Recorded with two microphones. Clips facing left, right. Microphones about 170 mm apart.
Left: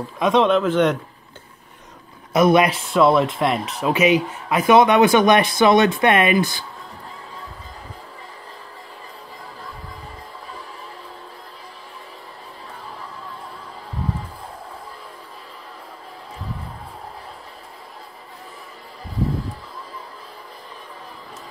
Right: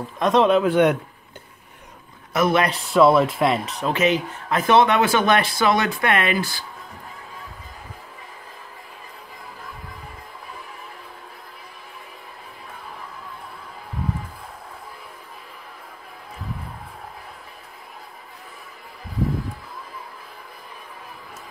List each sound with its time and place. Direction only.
0.2 s a man's voice: centre (ahead or behind)
2.3 s speech: 15° left (ahead or behind)
2.7 s speech: centre (ahead or behind)
3.8 s speech: 10° left (ahead or behind)